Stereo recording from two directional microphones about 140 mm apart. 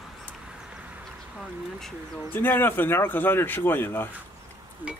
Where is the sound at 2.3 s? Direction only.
15° left (ahead or behind).